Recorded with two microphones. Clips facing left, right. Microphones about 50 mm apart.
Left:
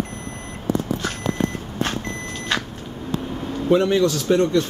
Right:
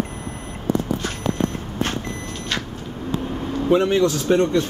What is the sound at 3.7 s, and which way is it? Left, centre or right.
Speech, centre.